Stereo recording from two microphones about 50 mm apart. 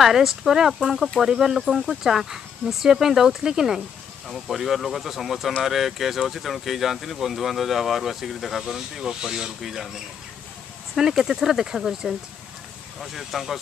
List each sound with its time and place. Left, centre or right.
0.0 s speech: centre
11.0 s speech: centre